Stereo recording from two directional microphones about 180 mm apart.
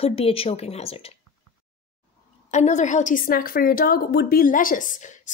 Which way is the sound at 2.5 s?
40° left (ahead or behind).